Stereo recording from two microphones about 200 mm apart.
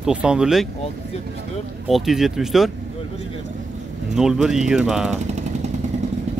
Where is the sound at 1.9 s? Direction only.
Centre (ahead or behind).